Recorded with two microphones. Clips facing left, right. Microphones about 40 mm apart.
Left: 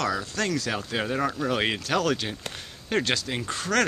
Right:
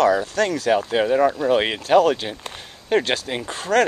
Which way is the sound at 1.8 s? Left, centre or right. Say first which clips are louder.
Right 9 dB; right.